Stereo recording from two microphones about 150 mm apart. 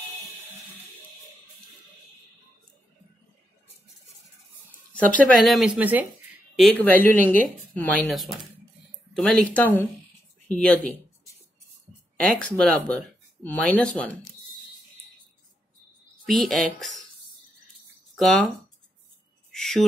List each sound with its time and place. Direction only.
4.9 s speech: 10° left (ahead or behind); by 6.0 s 10° right (ahead or behind)
6.5 s speech: 5° left (ahead or behind)
12.2 s speech: 10° left (ahead or behind)
16.3 s speech: centre (ahead or behind)
18.1 s speech: centre (ahead or behind)
19.5 s a sound: 5° left (ahead or behind)